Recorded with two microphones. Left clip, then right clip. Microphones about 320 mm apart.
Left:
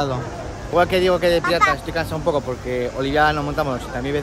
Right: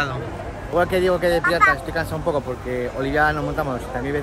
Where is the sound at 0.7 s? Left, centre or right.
Centre.